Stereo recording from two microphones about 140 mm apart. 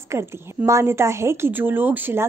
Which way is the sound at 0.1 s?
20° right (ahead or behind).